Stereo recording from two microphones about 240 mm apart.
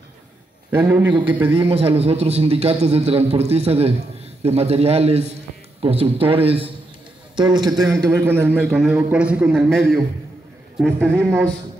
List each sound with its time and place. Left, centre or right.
0.7 s a man's voice: centre
1.5 s a man's voice: right; by 11.5 s centre